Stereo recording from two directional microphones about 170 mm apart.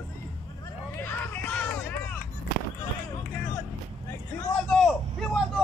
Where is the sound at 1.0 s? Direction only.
10° left (ahead or behind).